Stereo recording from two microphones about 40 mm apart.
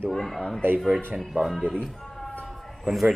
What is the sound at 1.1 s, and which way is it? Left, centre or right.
Speech, centre.